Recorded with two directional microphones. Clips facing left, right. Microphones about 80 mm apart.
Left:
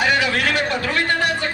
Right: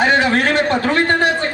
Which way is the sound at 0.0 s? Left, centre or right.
Right.